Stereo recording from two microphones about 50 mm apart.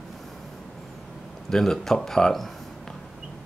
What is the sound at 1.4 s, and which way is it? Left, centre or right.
Speech, centre.